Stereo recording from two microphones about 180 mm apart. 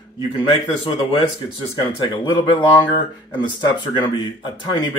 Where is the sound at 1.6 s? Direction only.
25° left (ahead or behind).